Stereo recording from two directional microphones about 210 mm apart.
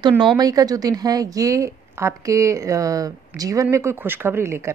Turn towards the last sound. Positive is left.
turn(degrees=-10)  # may be behind; listen again after turning